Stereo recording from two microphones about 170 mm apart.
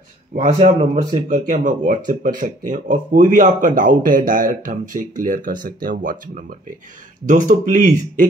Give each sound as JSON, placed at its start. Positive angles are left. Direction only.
{"t": 0.3, "sound": "speech", "side_deg": -50}